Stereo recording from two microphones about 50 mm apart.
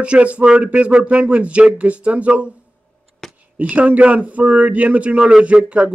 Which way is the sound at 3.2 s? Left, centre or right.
Centre.